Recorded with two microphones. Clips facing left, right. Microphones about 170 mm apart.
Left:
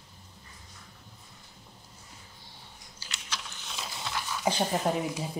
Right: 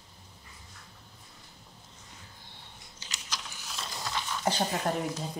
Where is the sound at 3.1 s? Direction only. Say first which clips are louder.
Even; centre (ahead or behind).